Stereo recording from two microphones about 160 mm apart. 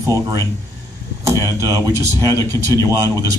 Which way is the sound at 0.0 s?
20° right (ahead or behind).